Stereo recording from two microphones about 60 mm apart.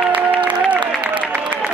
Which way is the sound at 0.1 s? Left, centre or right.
Right.